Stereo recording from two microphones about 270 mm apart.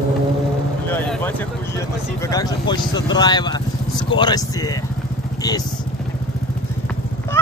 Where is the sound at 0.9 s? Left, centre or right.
Centre.